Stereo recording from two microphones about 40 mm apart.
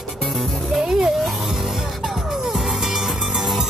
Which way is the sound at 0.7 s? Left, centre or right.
Centre.